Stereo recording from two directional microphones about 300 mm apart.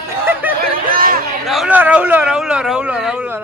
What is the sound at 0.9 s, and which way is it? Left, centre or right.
Chatter, right.